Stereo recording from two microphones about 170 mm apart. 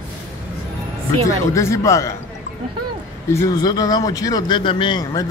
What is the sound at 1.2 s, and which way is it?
Speech, 20° left (ahead or behind).